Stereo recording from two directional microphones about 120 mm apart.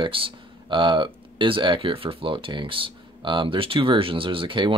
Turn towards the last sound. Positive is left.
turn(degrees=-45)  # may be behind; listen again after turning